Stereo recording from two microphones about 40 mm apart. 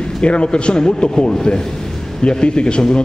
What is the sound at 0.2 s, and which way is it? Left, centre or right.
A man's voice, left.